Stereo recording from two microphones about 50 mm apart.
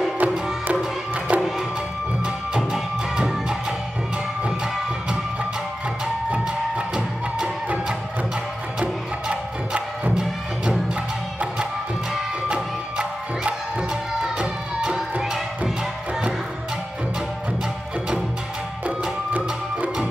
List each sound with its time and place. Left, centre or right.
0.2 s music: right
2.2 s music: centre
6.3 s music: centre
8.7 s music: centre
12.4 s music: right
18.9 s music: right